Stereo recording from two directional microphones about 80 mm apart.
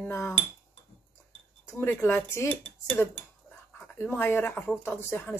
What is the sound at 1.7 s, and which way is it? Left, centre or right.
Speech, left.